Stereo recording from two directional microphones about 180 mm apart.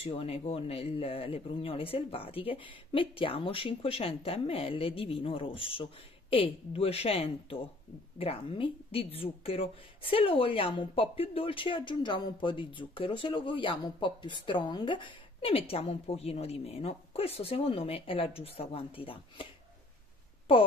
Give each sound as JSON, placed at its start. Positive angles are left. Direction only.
{"t": 0.0, "sound": "a woman's voice", "side_deg": 30}